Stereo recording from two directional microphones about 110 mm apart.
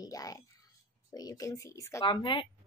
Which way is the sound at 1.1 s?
35° left (ahead or behind).